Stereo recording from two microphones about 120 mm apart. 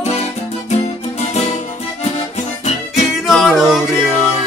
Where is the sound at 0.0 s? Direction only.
65° left (ahead or behind).